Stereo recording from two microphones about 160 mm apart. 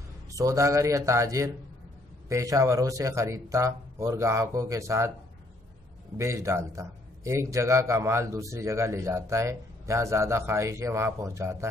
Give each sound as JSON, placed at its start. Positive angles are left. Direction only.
{"t": 0.3, "sound": "speech", "side_deg": -20}
{"t": 6.1, "sound": "a man's voice", "side_deg": -20}